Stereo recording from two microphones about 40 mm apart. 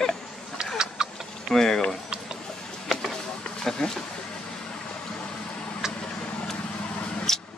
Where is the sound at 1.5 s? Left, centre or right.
Centre.